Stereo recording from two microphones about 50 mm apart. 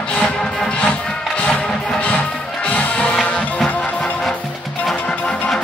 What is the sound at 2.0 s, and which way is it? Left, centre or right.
Music, left.